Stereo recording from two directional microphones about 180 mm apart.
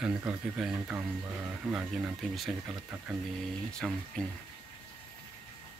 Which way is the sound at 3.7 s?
5° left (ahead or behind).